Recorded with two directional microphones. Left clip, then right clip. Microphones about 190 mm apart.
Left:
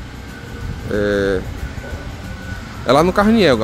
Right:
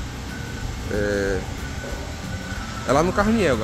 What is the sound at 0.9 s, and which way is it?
Speech, 50° left (ahead or behind).